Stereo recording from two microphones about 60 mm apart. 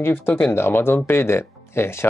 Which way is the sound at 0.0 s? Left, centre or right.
Left.